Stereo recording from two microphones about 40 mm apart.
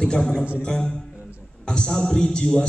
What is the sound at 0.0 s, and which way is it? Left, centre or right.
A man's voice, left.